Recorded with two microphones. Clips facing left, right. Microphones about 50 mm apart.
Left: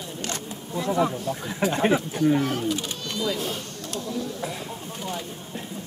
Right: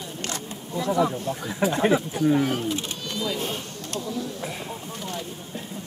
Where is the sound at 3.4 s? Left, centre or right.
Right.